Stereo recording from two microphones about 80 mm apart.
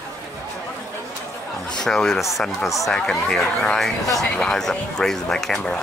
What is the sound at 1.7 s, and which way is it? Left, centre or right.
Speech, centre.